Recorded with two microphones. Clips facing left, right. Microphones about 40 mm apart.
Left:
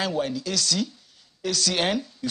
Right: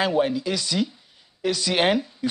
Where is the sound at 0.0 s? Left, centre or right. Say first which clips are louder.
Right 5 dB; centre.